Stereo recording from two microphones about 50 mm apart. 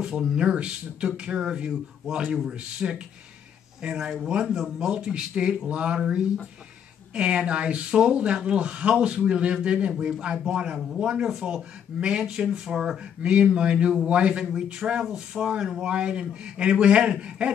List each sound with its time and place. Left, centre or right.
0.0 s speech: centre
2.2 s speech: centre
2.8 s speech: right
13.2 s speech: right